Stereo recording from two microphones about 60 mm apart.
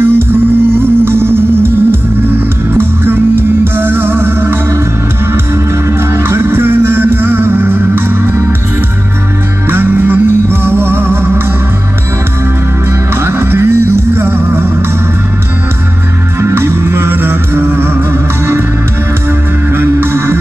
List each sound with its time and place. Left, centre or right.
0.0 s music: right
5.9 s music: right
9.7 s music: right
13.1 s music: right
16.3 s music: right
19.7 s music: right